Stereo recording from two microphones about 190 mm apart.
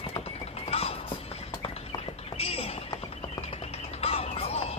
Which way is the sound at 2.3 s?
30° left (ahead or behind).